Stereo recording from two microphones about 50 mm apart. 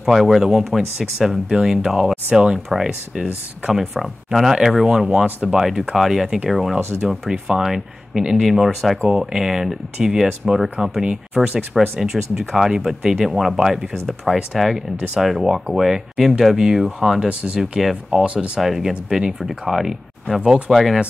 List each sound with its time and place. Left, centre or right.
0.0 s speech: centre
9.1 s speech: centre
17.3 s speech: right
17.6 s speech: centre
18.2 s speech: right
18.6 s speech: centre